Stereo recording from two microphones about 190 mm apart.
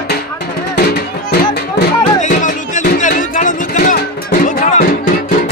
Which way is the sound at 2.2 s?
40° left (ahead or behind).